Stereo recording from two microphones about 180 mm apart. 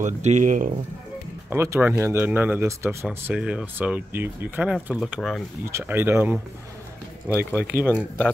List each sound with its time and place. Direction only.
0.0 s speech: 40° right (ahead or behind)
1.5 s speech: 15° right (ahead or behind)
5.7 s speech: 15° right (ahead or behind)
7.8 s speech: 5° right (ahead or behind)